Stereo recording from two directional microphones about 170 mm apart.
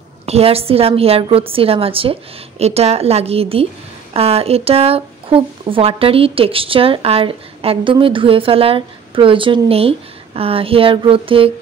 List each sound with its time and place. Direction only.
0.3 s speech: 35° right (ahead or behind)